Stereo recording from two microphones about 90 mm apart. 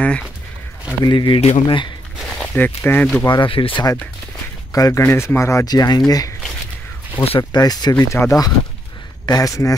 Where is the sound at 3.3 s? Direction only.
70° left (ahead or behind).